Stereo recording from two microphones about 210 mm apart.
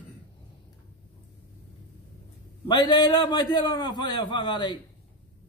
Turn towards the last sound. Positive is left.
turn(degrees=20)  # may be behind; listen again after turning